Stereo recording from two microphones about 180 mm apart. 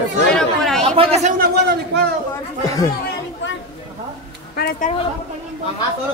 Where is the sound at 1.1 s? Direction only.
45° right (ahead or behind); by 1.8 s 65° right (ahead or behind).